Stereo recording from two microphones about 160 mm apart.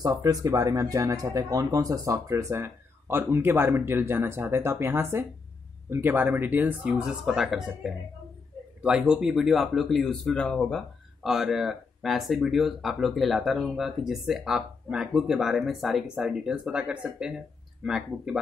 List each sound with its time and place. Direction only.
0.0 s speech: 20° right (ahead or behind); by 18.4 s 5° right (ahead or behind)